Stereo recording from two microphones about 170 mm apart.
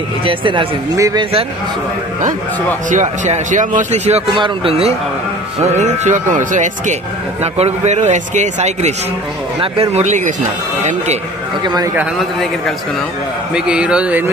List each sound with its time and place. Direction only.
0.2 s a man's voice: 30° right (ahead or behind)
0.9 s a man's voice: 20° right (ahead or behind)
2.9 s a man's voice: 45° right (ahead or behind)
5.6 s a man's voice: 45° right (ahead or behind)
11.6 s a man's voice: 25° right (ahead or behind)
13.6 s a man's voice: 5° right (ahead or behind)